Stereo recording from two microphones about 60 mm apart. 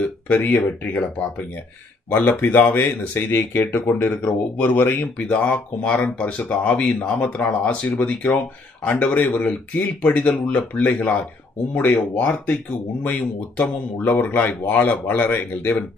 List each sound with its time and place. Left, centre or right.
0.0 s speech: left
2.2 s speech: left